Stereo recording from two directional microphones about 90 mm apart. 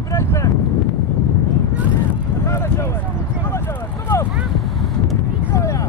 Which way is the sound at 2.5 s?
30° left (ahead or behind).